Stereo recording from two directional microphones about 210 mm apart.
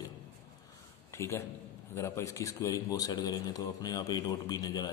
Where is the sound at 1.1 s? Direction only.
15° left (ahead or behind).